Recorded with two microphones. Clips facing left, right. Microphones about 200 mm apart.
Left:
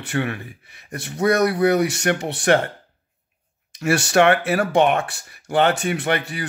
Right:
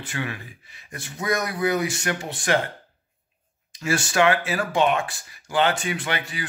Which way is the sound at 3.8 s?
65° left (ahead or behind).